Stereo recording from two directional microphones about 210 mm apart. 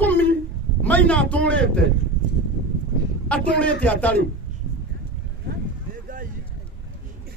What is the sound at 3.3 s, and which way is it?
Speech, 5° left (ahead or behind).